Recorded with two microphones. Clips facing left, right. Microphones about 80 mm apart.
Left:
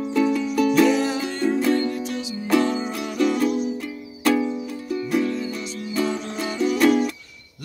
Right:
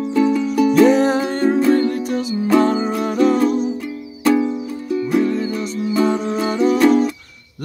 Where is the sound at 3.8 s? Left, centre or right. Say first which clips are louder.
Right 4 dB; centre.